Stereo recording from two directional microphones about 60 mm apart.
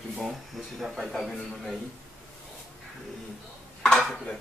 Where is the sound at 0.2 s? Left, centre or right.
Centre.